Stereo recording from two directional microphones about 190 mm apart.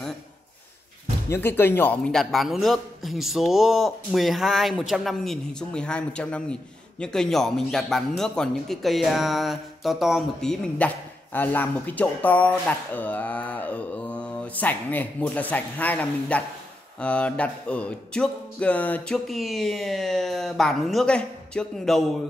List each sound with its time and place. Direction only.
1.3 s a man's voice: 10° left (ahead or behind)